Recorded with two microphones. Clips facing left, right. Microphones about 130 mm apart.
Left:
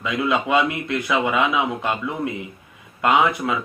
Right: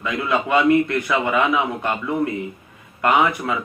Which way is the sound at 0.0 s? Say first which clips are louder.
Even; 10° left (ahead or behind).